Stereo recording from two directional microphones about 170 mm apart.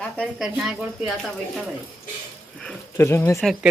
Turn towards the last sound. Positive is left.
turn(degrees=15)  # may be behind; listen again after turning